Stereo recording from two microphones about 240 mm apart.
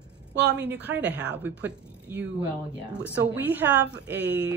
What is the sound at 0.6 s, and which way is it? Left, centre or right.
A woman's voice, centre.